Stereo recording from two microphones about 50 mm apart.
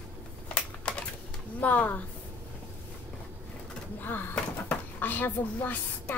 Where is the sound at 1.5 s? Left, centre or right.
Left.